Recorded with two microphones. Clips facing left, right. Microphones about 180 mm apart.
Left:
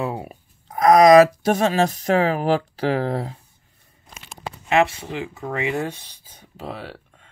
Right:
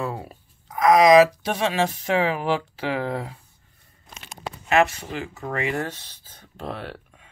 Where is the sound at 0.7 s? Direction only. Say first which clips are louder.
Left 3 dB; 40° left (ahead or behind).